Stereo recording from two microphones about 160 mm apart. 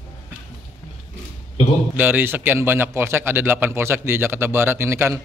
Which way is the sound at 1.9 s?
10° right (ahead or behind).